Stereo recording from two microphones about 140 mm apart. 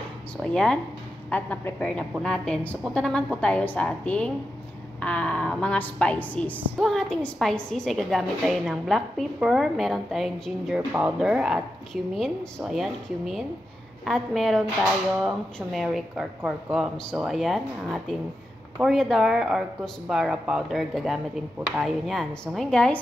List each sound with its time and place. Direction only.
0.4 s a woman's voice: 5° left (ahead or behind)
10.9 s speech: 15° right (ahead or behind)
11.1 s speech: 5° right (ahead or behind)